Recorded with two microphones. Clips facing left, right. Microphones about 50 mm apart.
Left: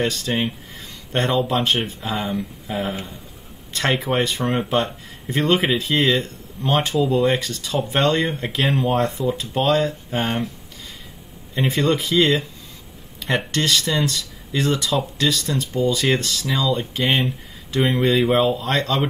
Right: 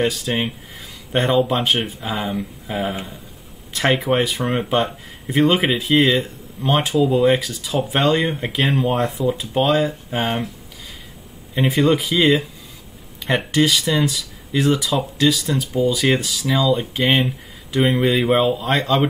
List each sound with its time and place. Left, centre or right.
0.0 s speech: centre
11.5 s speech: centre